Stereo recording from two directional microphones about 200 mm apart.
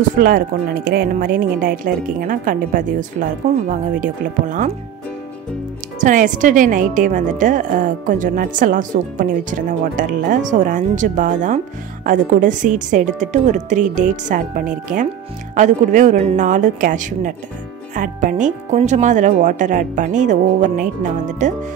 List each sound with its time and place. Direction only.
0.2 s speech: 45° right (ahead or behind)
5.9 s a woman's voice: 40° right (ahead or behind)